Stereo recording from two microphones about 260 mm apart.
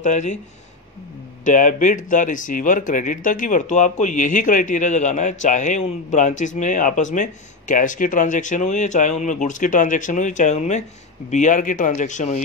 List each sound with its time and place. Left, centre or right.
0.0 s speech: left
1.4 s speech: left